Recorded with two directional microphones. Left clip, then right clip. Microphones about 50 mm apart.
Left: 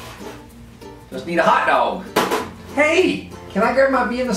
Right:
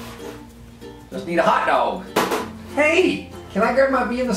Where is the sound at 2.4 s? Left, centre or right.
Centre.